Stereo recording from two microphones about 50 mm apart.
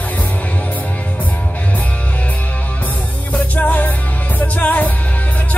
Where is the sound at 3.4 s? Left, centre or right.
Left.